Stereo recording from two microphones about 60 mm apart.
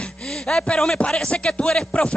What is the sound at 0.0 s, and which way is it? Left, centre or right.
A man's voice, centre.